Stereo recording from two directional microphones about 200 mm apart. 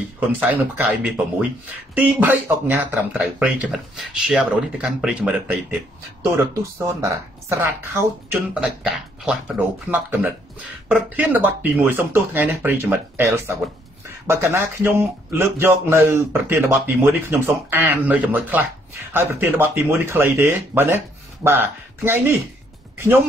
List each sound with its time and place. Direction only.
0.3 s speech: 10° right (ahead or behind)
7.0 s speech: 15° right (ahead or behind)